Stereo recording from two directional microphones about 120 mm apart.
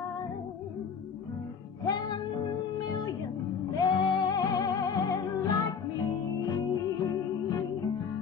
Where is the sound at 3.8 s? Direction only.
35° left (ahead or behind).